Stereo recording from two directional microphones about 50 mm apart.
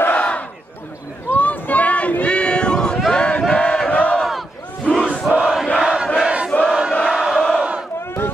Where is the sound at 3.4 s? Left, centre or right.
Left.